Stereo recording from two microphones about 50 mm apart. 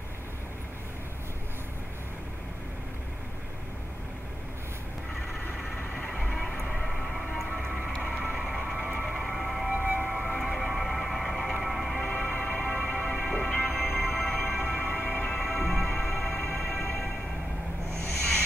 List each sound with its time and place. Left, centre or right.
6.3 s music: centre
7.9 s vehicle: centre
8.2 s vehicle: centre
9.0 s music: centre
9.8 s music: right
10.0 s music: centre
14.8 s music: centre